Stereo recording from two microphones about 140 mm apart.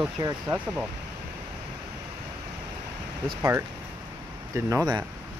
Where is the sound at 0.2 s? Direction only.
30° right (ahead or behind).